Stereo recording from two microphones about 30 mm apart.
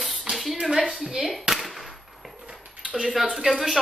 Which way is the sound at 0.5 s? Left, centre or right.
Right.